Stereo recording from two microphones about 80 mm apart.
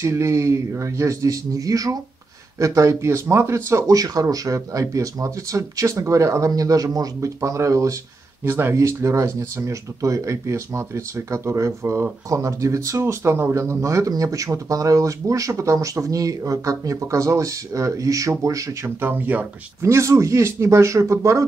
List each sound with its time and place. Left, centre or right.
0.0 s speech: right
8.5 s speech: right
8.7 s speech: right
18.9 s speech: right
19.8 s speech: right